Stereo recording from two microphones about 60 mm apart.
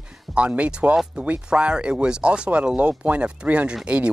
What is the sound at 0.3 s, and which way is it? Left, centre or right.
A man's voice, right.